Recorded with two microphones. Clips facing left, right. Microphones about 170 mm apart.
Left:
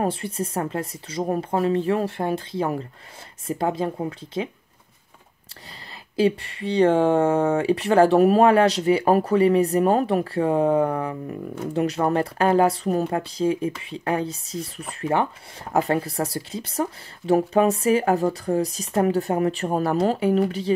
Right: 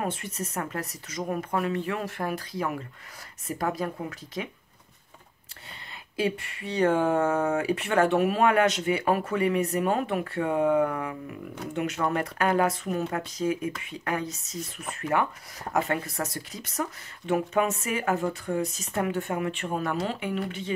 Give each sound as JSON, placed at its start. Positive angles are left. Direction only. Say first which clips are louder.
{"t": 0.0, "sound": "speech", "louder": "left 7 dB", "side_deg": 30}
{"t": 6.1, "sound": "speech", "louder": "left 7 dB", "side_deg": 30}